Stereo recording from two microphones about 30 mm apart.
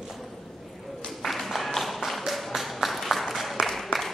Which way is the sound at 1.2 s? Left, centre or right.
Centre.